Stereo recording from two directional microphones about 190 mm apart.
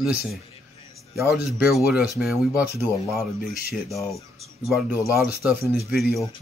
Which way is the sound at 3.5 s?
50° left (ahead or behind).